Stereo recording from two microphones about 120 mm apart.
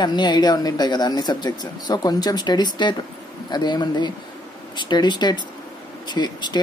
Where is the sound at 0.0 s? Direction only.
35° left (ahead or behind).